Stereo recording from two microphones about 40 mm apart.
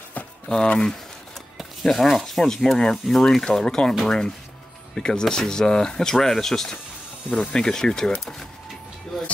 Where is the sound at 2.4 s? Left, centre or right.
Centre.